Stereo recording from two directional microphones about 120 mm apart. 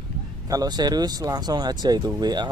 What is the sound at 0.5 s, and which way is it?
Speech, 35° right (ahead or behind).